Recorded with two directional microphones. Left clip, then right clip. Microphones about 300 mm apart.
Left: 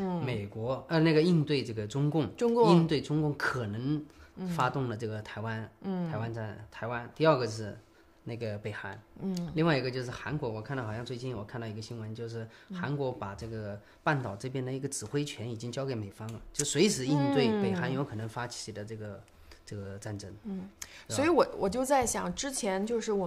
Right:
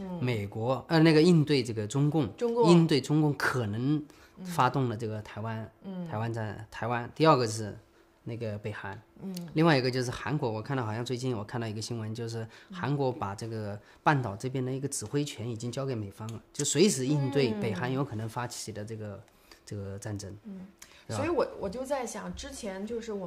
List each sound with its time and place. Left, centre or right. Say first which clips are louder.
0.2 s speech: right 3 dB; right
2.3 s speech: left 1 dB; left
2.6 s speech: right 3 dB; right
6.0 s speech: right 2 dB; right
21.2 s a woman's voice: left 4 dB; left